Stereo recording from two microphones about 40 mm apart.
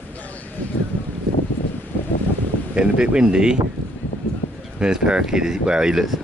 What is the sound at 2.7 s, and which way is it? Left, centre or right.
Speech, right.